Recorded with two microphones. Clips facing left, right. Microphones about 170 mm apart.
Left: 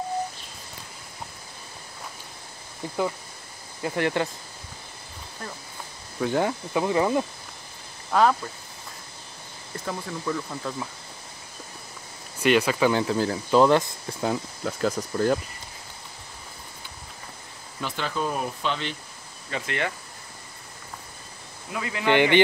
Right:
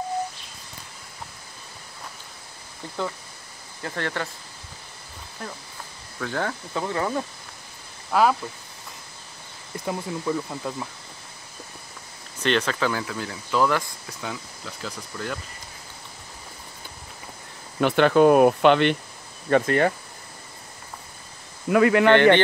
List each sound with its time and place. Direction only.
3.8 s speech: 15° left (ahead or behind)
6.1 s speech: 20° left (ahead or behind)
8.1 s speech: 5° right (ahead or behind)
9.8 s speech: 15° right (ahead or behind)
12.4 s speech: 10° left (ahead or behind)
12.9 s speech: 30° left (ahead or behind)
14.2 s speech: 45° left (ahead or behind)
17.7 s speech: 65° right (ahead or behind)
19.5 s speech: 40° right (ahead or behind)
21.6 s speech: 65° right (ahead or behind)
22.1 s speech: 15° left (ahead or behind)